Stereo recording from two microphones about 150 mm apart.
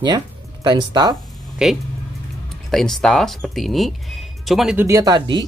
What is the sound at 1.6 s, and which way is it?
Speech, 5° right (ahead or behind).